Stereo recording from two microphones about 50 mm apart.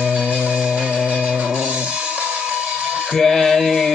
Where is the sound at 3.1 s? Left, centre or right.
Centre.